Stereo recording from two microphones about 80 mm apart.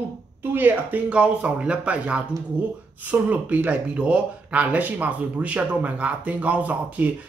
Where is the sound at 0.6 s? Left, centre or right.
Right.